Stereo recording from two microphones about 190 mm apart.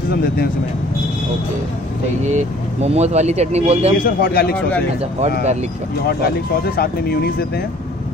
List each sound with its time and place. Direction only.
2.2 s speech: 35° right (ahead or behind)
4.0 s speech: 50° left (ahead or behind)
6.0 s speech: 55° left (ahead or behind)